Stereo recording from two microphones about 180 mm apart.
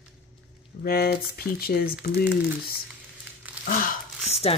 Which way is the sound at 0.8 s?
60° left (ahead or behind).